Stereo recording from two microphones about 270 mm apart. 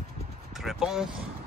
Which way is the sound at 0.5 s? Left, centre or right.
Centre.